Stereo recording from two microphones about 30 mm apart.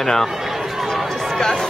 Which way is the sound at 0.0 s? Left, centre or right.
Centre.